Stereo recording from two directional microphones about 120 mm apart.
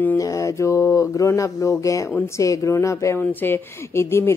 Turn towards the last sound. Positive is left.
turn(degrees=20)  # may be behind; listen again after turning